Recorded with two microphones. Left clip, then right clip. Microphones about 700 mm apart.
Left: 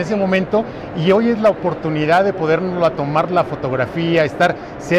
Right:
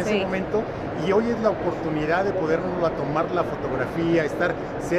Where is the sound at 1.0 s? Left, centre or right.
Left.